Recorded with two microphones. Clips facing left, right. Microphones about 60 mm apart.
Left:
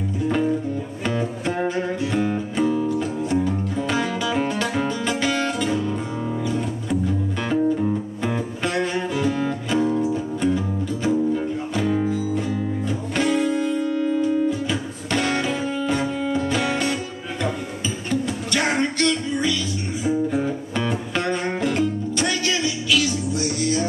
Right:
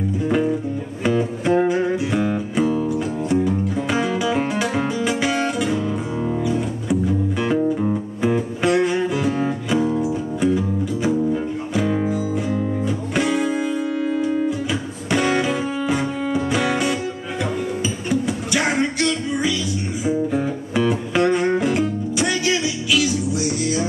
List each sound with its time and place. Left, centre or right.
1.0 s music: centre
18.2 s music: centre
20.7 s music: centre